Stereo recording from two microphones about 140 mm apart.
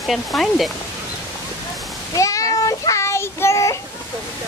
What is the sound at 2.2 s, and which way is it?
Child singing, 25° left (ahead or behind).